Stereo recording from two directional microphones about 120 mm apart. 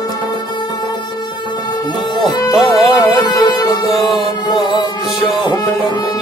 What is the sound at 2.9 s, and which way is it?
Music, 35° left (ahead or behind).